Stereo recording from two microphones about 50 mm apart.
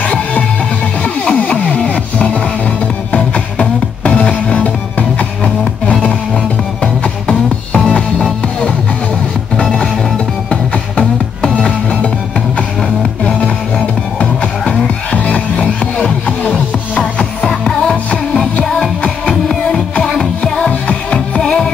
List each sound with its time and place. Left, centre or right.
0.0 s music: left
7.9 s music: left
13.3 s music: centre
16.4 s music: centre
19.6 s music: centre